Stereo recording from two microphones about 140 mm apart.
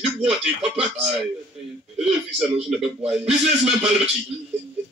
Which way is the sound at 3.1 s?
5° right (ahead or behind).